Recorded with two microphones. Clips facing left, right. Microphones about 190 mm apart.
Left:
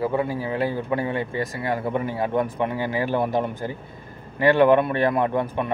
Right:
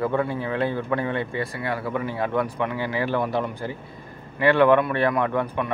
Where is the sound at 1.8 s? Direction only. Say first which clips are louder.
Left 1 dB; 20° left (ahead or behind).